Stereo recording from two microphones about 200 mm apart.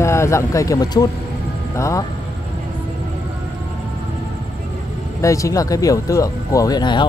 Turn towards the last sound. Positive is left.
turn(degrees=20)  # may be behind; listen again after turning